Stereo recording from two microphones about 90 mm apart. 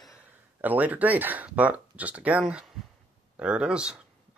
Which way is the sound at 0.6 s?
20° right (ahead or behind).